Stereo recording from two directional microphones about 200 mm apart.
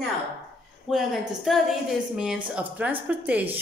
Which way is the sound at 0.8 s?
Centre (ahead or behind).